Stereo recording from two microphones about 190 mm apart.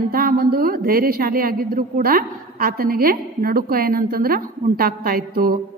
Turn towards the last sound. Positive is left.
turn(degrees=-50)  # may be behind; listen again after turning